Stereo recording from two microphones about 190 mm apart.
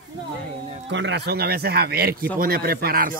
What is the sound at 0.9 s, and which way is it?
Speech, 70° right (ahead or behind).